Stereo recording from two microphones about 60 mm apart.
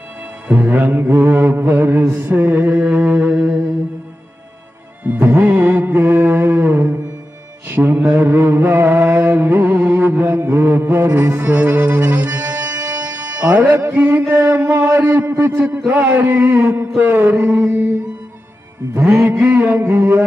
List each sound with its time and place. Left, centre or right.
0.5 s mantra: right
5.0 s music: right
7.6 s mantra: right
19.0 s mantra: right